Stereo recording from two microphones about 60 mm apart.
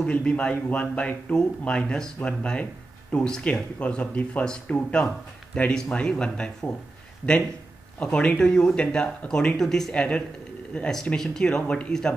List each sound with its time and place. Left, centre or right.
0.0 s speech: centre
8.0 s speech: centre